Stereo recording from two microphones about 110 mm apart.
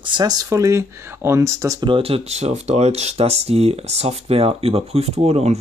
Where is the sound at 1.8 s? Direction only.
55° right (ahead or behind).